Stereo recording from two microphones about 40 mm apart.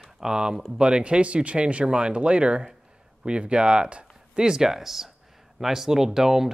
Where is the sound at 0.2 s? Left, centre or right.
Centre.